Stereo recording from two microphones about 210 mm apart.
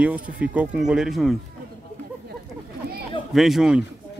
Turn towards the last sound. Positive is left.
turn(degrees=-5)  # may be behind; listen again after turning